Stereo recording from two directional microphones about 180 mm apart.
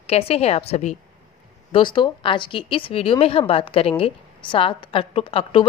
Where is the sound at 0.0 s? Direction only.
35° left (ahead or behind).